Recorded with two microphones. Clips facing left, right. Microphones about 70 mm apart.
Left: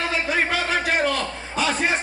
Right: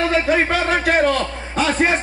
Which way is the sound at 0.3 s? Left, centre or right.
Right.